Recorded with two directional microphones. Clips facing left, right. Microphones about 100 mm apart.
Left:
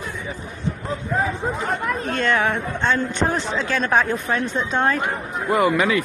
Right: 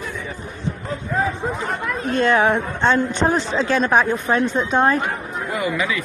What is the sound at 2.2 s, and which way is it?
Speech, 20° right (ahead or behind).